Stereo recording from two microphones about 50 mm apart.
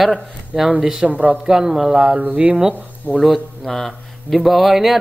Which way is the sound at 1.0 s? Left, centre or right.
Right.